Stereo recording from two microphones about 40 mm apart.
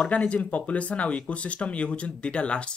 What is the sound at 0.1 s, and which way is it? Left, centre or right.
Speech, left.